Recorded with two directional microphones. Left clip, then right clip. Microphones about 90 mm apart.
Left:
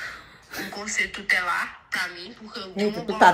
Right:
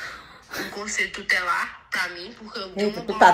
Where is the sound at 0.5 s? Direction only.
40° right (ahead or behind).